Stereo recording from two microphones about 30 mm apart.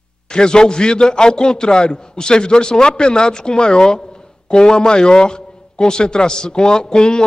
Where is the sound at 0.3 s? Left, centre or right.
Left.